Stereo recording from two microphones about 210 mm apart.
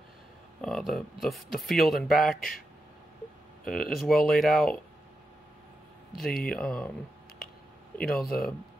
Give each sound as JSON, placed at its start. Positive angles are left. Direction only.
{"t": 0.6, "sound": "speech", "side_deg": 0}
{"t": 3.6, "sound": "speech", "side_deg": 0}
{"t": 6.2, "sound": "speech", "side_deg": 45}
{"t": 6.5, "sound": "speech", "side_deg": 5}
{"t": 8.0, "sound": "speech", "side_deg": 0}